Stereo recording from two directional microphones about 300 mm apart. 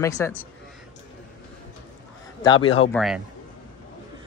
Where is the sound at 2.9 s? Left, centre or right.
Centre.